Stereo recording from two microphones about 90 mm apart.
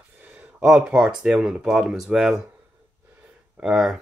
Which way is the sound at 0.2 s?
15° right (ahead or behind).